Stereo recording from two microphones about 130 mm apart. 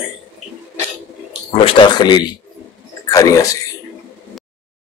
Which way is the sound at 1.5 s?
45° left (ahead or behind).